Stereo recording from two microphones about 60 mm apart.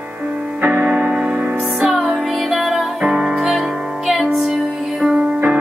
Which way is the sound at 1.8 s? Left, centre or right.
Centre.